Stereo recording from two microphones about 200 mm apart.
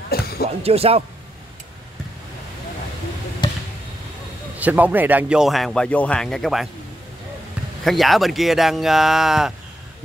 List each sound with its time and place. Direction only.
0.1 s a sound: 50° left (ahead or behind)
0.5 s speech: 30° right (ahead or behind)
3.4 s chop: 20° left (ahead or behind)
4.6 s speech: 5° right (ahead or behind)
7.8 s speech: centre (ahead or behind)